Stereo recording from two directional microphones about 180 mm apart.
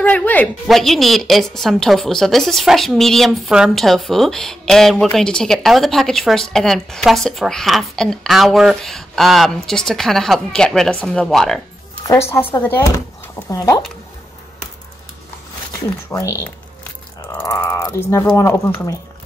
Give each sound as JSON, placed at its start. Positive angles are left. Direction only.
{"t": 0.0, "sound": "a woman's voice", "side_deg": 10}
{"t": 12.3, "sound": "speech", "side_deg": 15}
{"t": 16.1, "sound": "speech", "side_deg": 15}